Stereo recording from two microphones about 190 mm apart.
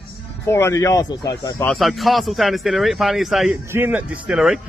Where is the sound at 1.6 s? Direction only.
Centre (ahead or behind).